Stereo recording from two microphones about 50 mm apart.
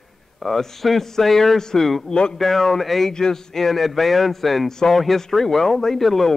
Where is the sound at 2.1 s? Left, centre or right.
Centre.